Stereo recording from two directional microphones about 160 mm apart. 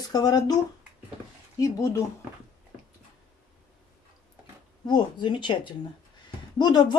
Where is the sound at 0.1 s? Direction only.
25° left (ahead or behind).